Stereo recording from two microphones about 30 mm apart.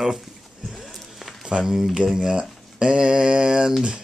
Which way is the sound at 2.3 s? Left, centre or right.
Right.